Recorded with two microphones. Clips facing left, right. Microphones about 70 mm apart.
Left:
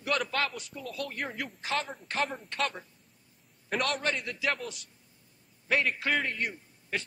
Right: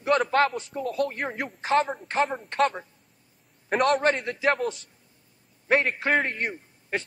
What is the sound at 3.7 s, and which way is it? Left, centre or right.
Speech, right.